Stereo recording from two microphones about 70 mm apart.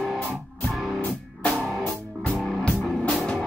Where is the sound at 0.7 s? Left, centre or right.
Centre.